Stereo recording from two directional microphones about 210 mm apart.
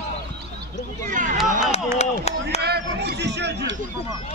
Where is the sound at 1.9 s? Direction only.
30° left (ahead or behind).